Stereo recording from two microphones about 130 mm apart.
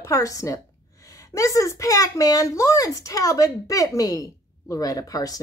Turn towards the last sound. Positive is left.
turn(degrees=30)  # may be behind; listen again after turning